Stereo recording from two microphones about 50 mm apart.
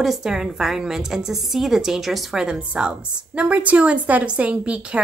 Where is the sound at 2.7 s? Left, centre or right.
Right.